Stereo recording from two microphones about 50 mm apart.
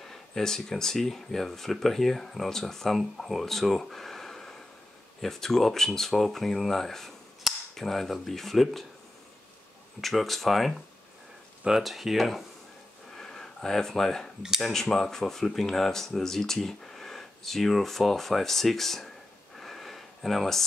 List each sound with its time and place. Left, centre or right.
0.0 s speech: centre
9.9 s speech: centre
11.8 s speech: centre
13.1 s a sound: centre
14.6 s speech: centre
19.6 s a sound: centre